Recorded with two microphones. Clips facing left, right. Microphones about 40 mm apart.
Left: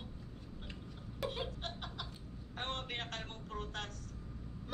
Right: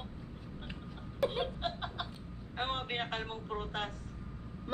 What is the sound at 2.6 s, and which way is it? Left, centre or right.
A woman's voice, right.